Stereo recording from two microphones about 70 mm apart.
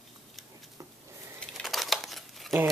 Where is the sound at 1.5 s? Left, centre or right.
Centre.